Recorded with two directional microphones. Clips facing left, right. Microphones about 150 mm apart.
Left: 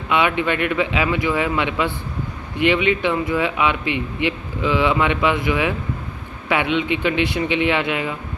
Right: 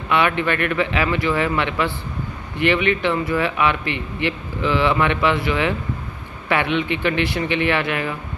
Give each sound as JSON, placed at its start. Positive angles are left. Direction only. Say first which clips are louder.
{"t": 0.1, "sound": "a man's voice", "louder": "even", "side_deg": 15}